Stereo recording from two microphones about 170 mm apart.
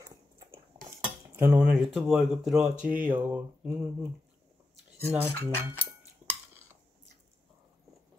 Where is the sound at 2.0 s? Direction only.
Centre (ahead or behind).